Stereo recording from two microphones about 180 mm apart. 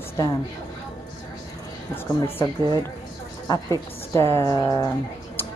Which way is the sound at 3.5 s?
15° left (ahead or behind).